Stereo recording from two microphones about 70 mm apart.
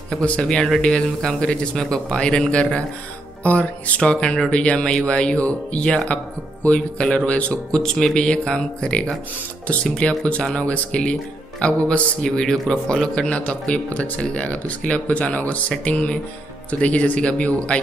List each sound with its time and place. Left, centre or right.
0.2 s a man's voice: centre